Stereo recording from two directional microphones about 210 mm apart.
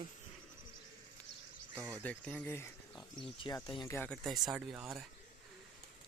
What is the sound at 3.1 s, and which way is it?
Speech, 20° left (ahead or behind).